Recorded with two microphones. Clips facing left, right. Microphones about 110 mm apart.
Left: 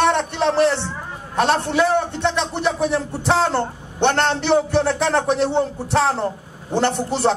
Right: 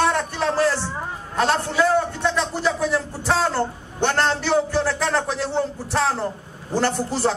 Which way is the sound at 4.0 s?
65° left (ahead or behind).